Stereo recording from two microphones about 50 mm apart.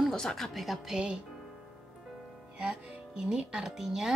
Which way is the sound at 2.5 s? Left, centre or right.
Centre.